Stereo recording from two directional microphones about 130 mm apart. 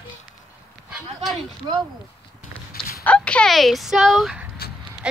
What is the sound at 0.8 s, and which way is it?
Speech, 5° right (ahead or behind).